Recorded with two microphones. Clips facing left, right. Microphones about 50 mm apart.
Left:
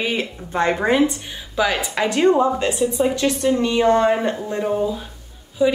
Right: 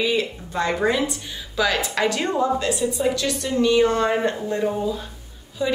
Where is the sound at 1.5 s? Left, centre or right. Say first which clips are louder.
Left 1 dB; centre.